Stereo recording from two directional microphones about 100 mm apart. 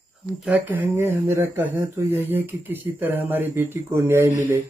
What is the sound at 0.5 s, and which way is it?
Speech, 20° right (ahead or behind).